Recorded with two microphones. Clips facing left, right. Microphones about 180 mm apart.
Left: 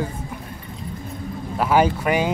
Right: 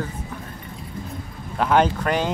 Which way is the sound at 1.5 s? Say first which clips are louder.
Left 1 dB; 5° left (ahead or behind).